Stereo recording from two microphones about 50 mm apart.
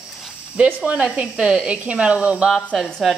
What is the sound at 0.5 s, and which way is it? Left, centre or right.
A woman's voice, right.